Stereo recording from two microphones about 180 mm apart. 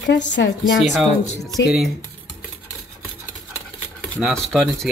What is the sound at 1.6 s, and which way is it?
Speech, 70° left (ahead or behind).